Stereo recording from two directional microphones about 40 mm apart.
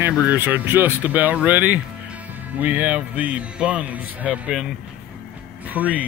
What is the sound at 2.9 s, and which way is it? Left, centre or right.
Speech, right.